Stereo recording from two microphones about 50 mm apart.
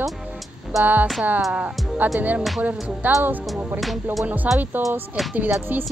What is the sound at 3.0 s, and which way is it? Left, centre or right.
Speech, right.